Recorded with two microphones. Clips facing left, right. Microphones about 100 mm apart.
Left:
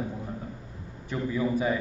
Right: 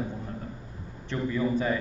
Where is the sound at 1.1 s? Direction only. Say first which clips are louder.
Even; 10° left (ahead or behind).